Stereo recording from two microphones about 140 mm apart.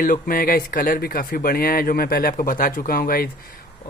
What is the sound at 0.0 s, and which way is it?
Speech, 85° left.